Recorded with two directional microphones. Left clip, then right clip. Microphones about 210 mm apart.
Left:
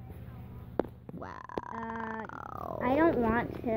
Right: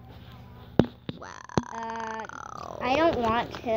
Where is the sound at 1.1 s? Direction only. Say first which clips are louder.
Right 6 dB; 5° left (ahead or behind).